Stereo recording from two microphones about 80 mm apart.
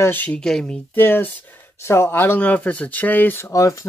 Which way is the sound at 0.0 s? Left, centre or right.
Left.